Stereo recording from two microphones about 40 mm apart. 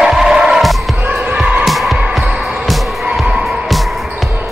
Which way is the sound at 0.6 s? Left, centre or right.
Centre.